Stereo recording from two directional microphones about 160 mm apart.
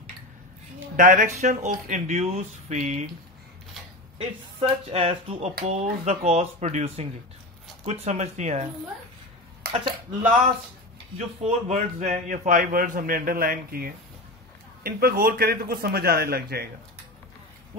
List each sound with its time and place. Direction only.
0.7 s speech: 55° right (ahead or behind)
4.6 s speech: 35° right (ahead or behind)
9.6 s a sound: 70° right (ahead or behind)
11.1 s a man's voice: 45° right (ahead or behind); by 16.6 s 75° right (ahead or behind)